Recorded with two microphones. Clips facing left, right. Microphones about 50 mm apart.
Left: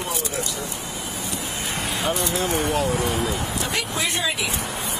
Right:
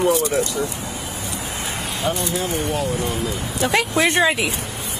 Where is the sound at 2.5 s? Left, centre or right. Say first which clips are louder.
Even; left.